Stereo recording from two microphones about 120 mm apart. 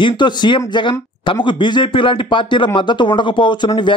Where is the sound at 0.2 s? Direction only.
40° left (ahead or behind).